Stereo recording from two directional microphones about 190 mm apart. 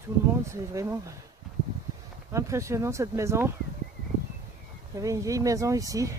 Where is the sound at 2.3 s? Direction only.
15° right (ahead or behind).